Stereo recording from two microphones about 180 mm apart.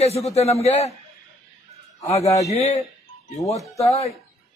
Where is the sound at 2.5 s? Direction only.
35° left (ahead or behind).